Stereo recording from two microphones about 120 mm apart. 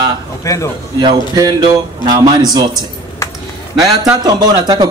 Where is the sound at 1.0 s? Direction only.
35° right (ahead or behind).